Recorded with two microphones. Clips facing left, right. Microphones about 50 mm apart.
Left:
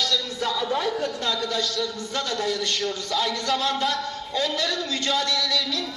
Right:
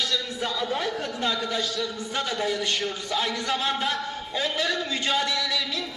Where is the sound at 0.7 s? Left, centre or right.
Centre.